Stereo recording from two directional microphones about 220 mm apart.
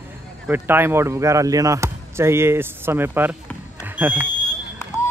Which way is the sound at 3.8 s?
10° right (ahead or behind).